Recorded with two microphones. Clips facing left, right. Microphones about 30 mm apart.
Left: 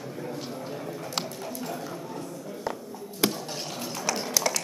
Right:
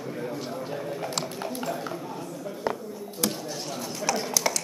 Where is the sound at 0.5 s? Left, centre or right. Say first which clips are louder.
Right 3 dB; centre.